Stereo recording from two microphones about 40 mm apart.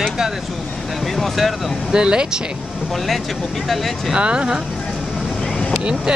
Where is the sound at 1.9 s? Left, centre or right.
Right.